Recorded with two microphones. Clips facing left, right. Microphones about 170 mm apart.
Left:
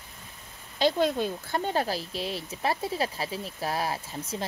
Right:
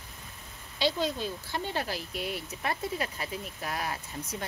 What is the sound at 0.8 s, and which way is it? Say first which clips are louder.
Speech: left 5 dB; 50° left (ahead or behind).